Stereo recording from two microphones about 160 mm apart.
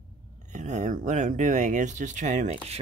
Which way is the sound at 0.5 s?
50° right (ahead or behind).